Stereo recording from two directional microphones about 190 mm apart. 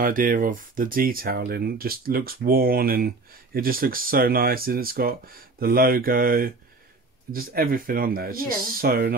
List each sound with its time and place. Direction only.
0.0 s speech: 45° right (ahead or behind)